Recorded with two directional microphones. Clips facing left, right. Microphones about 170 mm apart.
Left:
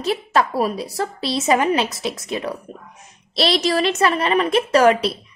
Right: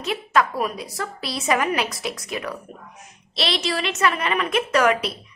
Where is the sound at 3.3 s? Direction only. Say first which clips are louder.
Left 6 dB; 40° left (ahead or behind).